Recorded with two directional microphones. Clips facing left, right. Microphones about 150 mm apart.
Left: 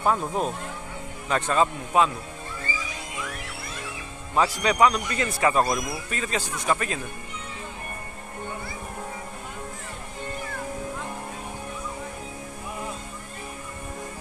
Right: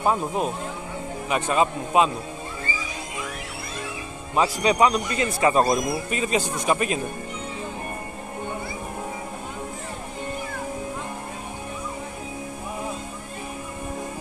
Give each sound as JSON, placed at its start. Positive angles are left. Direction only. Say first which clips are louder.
{"t": 0.0, "sound": "a man's voice", "louder": "right 1 dB", "side_deg": -20}
{"t": 4.4, "sound": "a man's voice", "louder": "right 1 dB", "side_deg": -20}